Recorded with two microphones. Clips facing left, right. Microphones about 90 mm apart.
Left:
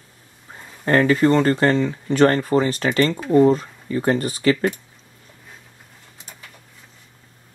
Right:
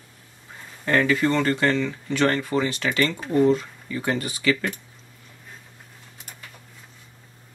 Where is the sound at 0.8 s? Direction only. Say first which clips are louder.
Left 5 dB; 40° left (ahead or behind).